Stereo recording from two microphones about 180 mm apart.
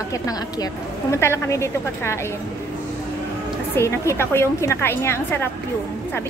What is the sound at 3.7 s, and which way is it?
A woman's voice, 15° left (ahead or behind).